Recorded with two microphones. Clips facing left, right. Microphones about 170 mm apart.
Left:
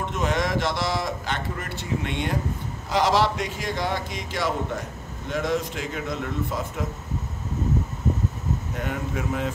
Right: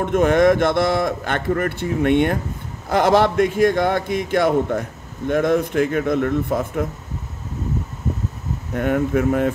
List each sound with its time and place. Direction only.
0.0 s a man's voice: 55° right (ahead or behind)
8.7 s a man's voice: 55° right (ahead or behind)